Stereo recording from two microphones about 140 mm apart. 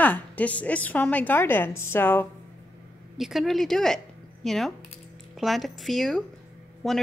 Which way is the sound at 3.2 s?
Centre (ahead or behind).